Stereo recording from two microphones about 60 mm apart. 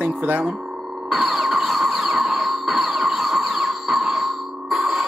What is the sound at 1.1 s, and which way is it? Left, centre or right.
Music, centre.